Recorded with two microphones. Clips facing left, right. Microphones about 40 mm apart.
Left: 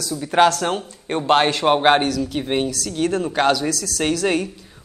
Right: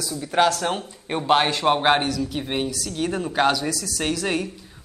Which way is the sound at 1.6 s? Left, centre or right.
Centre.